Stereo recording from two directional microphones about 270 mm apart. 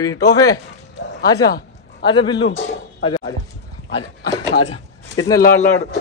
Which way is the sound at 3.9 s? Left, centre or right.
Centre.